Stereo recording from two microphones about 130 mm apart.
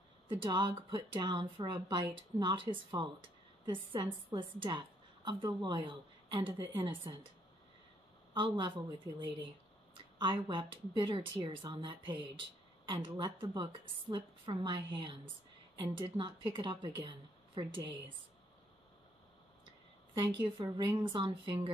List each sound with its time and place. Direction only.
0.5 s a woman's voice: 40° right (ahead or behind)
8.3 s a woman's voice: 35° right (ahead or behind)
10.1 s a woman's voice: 40° right (ahead or behind)
20.2 s a woman's voice: 35° right (ahead or behind)